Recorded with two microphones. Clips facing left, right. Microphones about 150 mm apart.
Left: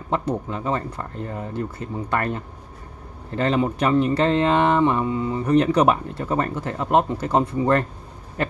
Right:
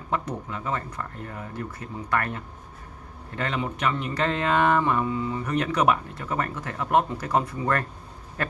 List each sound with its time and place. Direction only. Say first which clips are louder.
0.1 s speech: left 5 dB; 30° left (ahead or behind)